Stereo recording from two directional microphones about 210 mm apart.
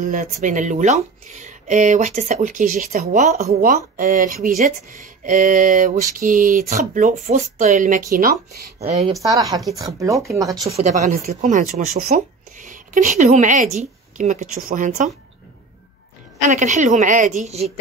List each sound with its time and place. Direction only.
0.0 s speech: 35° right (ahead or behind)
8.7 s speech: 30° right (ahead or behind)
9.2 s speech: 15° right (ahead or behind)
10.7 s speech: 35° right (ahead or behind)
16.3 s speech: 35° right (ahead or behind)